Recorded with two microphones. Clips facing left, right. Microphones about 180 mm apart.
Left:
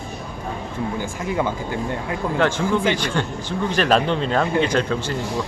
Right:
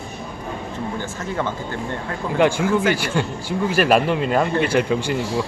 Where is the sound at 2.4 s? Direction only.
10° right (ahead or behind).